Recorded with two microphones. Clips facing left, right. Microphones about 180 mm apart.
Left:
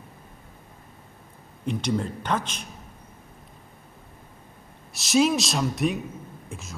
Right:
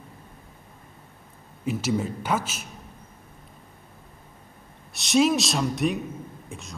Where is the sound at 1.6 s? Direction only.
5° right (ahead or behind).